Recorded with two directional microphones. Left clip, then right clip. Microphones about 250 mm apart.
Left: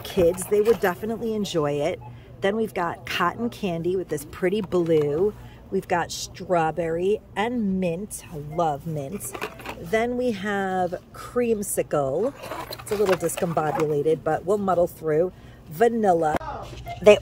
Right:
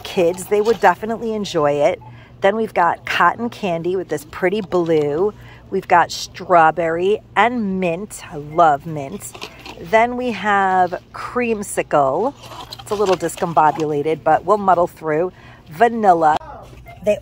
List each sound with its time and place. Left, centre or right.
0.0 s speech: centre
12.4 s speech: left
13.6 s speech: centre